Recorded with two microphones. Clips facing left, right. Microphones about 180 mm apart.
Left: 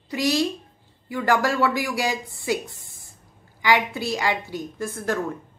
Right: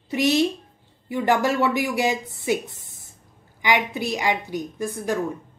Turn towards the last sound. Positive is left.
turn(degrees=-15)  # may be behind; listen again after turning